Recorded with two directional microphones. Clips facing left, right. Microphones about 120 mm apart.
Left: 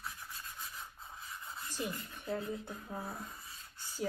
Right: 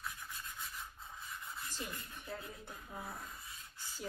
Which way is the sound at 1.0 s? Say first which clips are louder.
Left 1 dB; 25° left (ahead or behind).